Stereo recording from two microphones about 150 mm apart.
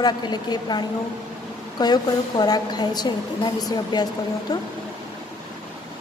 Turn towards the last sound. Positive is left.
turn(degrees=25)  # may be behind; listen again after turning